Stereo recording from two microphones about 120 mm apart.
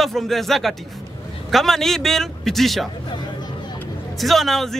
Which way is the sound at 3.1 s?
35° left (ahead or behind).